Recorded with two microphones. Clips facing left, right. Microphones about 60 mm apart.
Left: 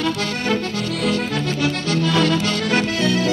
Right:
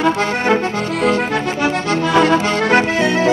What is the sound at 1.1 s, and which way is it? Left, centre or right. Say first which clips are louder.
Accordion: right 4 dB; right.